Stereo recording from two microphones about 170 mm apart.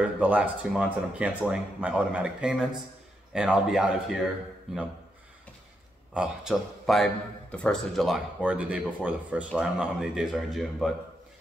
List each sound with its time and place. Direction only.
0.2 s speech: 5° right (ahead or behind)
6.1 s speech: 5° right (ahead or behind)